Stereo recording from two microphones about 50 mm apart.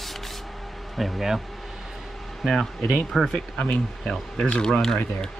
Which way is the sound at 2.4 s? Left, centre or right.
Centre.